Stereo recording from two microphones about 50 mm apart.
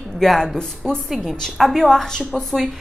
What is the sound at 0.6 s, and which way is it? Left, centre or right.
A woman's voice, centre.